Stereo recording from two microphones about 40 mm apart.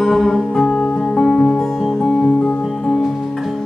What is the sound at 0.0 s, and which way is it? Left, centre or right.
Music, centre.